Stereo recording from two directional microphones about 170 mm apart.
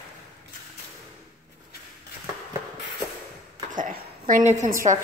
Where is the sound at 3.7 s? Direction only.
50° right (ahead or behind).